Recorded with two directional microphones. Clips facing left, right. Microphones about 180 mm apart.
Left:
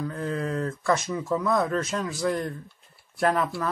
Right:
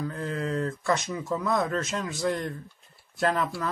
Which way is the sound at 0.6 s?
30° right (ahead or behind).